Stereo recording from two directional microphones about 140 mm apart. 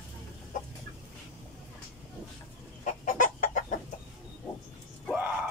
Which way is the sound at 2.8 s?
65° left (ahead or behind).